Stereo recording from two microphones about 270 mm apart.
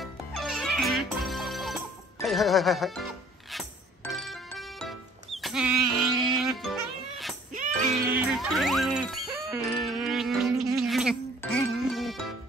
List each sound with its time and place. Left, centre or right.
0.0 s music: centre